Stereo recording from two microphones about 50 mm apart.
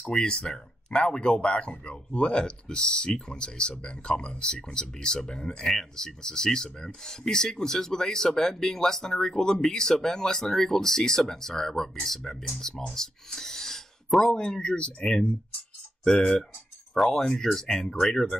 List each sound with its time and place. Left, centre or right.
0.2 s speech: centre
16.0 s speech: centre